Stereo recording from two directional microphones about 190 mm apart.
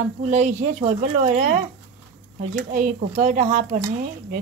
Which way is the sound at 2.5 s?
45° right (ahead or behind).